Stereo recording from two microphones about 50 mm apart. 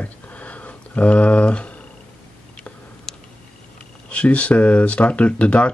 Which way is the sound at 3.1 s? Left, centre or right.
Centre.